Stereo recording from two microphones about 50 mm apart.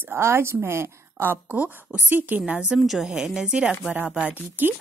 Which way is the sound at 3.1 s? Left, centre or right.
Centre.